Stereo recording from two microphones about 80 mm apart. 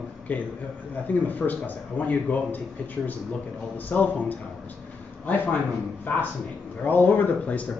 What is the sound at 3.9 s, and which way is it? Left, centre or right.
Speech, centre.